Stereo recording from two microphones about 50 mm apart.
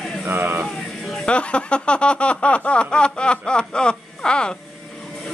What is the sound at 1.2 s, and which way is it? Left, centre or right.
Speech, left.